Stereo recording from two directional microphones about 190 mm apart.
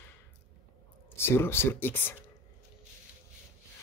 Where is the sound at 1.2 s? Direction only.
10° left (ahead or behind).